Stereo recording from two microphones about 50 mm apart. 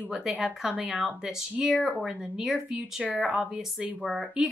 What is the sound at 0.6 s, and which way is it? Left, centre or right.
A woman's voice, right.